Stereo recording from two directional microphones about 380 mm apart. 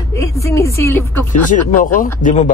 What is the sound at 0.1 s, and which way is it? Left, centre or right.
Speech, centre.